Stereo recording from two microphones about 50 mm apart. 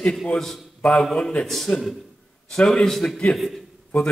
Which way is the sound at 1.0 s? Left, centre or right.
Centre.